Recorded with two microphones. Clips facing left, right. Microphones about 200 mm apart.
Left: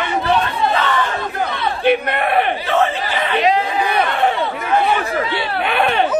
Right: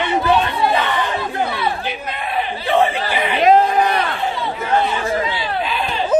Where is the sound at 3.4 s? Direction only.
50° right (ahead or behind).